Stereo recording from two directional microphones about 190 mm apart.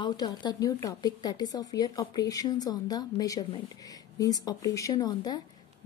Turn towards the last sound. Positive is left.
turn(degrees=20)  # may be behind; listen again after turning